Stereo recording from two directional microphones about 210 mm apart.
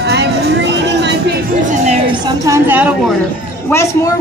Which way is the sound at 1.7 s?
30° right (ahead or behind).